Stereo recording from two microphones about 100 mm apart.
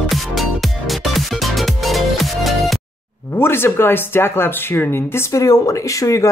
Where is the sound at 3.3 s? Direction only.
25° left (ahead or behind).